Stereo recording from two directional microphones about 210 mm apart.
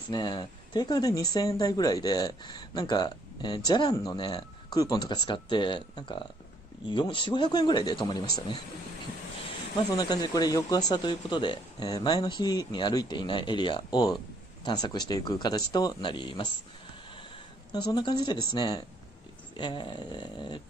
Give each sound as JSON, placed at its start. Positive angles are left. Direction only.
{"t": 0.1, "sound": "speech", "side_deg": 20}
{"t": 9.9, "sound": "speech", "side_deg": 20}
{"t": 17.7, "sound": "speech", "side_deg": 20}